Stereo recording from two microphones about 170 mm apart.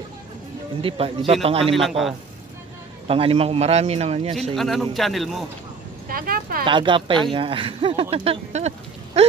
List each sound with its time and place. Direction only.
0.8 s speech: 35° right (ahead or behind)
1.8 s a man's voice: centre (ahead or behind)
3.1 s speech: 35° right (ahead or behind)
4.6 s a man's voice: centre (ahead or behind)
6.0 s speech: 60° right (ahead or behind)
6.6 s speech: 30° right (ahead or behind)